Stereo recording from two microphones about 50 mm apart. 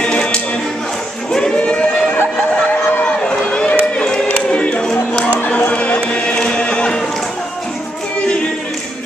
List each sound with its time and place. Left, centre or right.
0.0 s music: centre
1.3 s a sound: centre
2.7 s run: left
3.9 s crowd: centre
4.5 s music: left
5.7 s a sound: left